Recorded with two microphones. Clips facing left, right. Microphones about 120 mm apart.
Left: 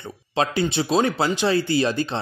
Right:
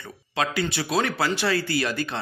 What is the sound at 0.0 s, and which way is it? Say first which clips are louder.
Speech: left 4 dB; 25° left (ahead or behind).